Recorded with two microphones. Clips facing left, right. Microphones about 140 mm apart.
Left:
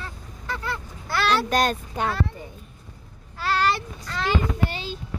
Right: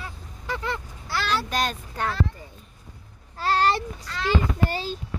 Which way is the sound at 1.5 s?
50° left (ahead or behind).